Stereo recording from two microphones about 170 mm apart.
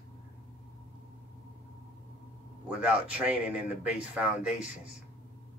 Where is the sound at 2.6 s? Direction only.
5° right (ahead or behind).